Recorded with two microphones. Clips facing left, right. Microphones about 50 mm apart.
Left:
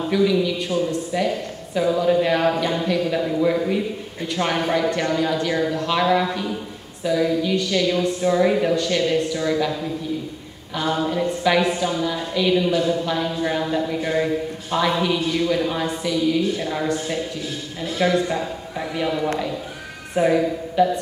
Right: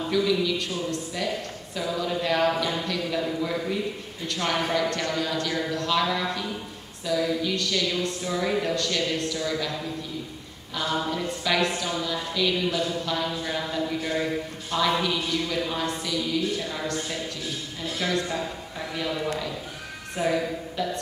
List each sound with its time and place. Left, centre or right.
0.1 s a woman's voice: centre
10.8 s a woman's voice: centre